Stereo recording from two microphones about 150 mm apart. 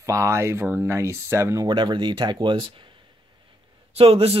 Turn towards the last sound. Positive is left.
turn(degrees=-40)  # may be behind; listen again after turning